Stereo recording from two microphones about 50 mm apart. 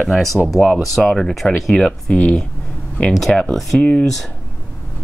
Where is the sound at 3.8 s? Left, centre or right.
Left.